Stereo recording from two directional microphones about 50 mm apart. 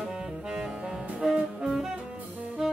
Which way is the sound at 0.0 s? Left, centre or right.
Centre.